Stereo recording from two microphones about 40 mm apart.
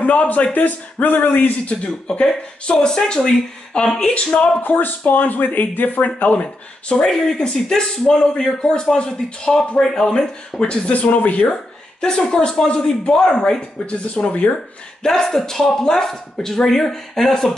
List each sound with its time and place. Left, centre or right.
0.0 s speech: left
0.5 s speech: left
1.7 s speech: left
4.6 s speech: left
6.4 s speech: left
7.1 s speech: centre
10.9 s speech: left
12.0 s speech: centre
13.6 s speech: left
15.0 s speech: centre